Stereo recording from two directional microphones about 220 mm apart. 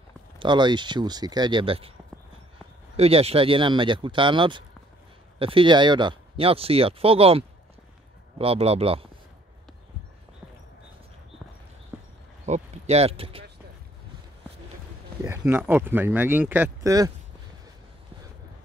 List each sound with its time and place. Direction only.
0.4 s speech: 20° right (ahead or behind)
3.0 s speech: 25° right (ahead or behind)
12.4 s a sound: 30° right (ahead or behind)
15.2 s speech: 10° right (ahead or behind)